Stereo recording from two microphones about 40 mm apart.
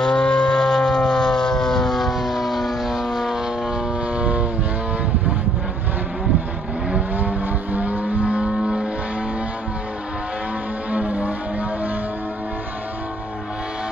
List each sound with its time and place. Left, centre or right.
0.0 s a sound: left; by 3.8 s centre
4.1 s vehicle: right
7.2 s vehicle: right
10.9 s vehicle: right